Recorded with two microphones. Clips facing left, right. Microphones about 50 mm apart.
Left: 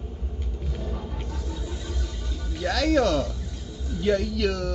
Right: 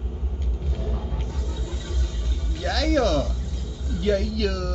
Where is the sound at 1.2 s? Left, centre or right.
Left.